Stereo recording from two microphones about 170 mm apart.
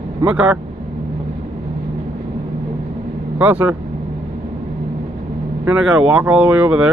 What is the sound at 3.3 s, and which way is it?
Speech, 10° right (ahead or behind).